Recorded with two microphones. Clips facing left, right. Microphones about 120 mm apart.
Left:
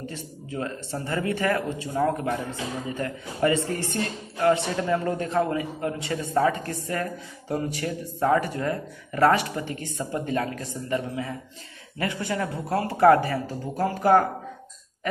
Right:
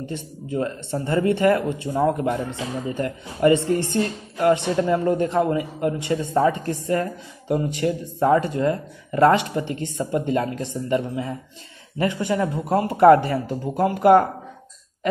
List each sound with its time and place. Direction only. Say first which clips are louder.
0.1 s speech: right 7 dB; 25° right (ahead or behind)